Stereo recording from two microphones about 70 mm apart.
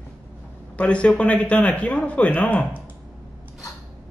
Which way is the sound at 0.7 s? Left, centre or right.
Centre.